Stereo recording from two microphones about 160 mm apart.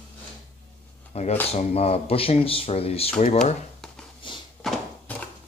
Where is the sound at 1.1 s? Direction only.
45° left (ahead or behind).